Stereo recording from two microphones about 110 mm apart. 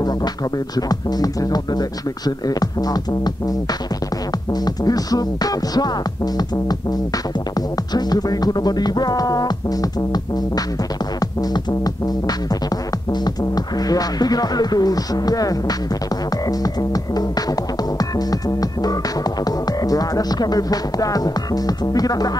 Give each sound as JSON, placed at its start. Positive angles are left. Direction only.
{"t": 0.7, "sound": "music", "side_deg": 35}
{"t": 4.6, "sound": "music", "side_deg": 35}